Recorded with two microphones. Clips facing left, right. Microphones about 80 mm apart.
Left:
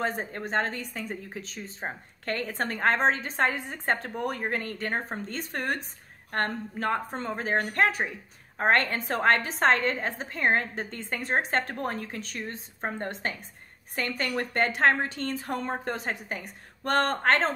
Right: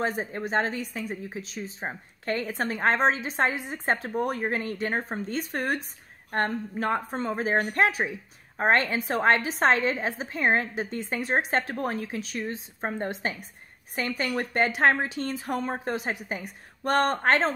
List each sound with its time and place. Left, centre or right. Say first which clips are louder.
0.0 s a woman's voice: right 2 dB; centre